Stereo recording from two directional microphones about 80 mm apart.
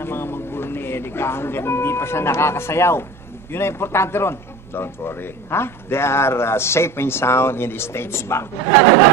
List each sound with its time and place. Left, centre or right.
0.0 s a man's voice: left